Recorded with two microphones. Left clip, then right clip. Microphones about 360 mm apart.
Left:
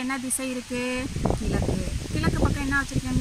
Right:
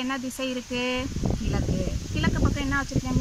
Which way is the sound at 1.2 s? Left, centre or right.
Left.